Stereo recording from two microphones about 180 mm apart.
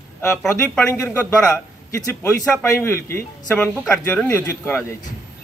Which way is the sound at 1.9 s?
15° left (ahead or behind).